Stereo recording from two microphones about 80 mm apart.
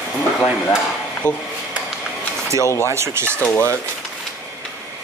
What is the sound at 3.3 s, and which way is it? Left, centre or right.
Speech, centre.